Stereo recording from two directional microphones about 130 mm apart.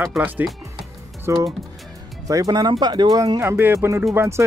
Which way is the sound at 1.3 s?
20° right (ahead or behind).